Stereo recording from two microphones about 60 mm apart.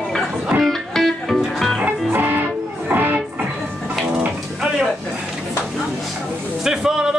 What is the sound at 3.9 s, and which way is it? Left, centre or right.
Music, centre.